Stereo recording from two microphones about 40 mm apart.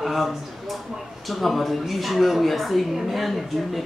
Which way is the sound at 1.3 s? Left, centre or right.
Centre.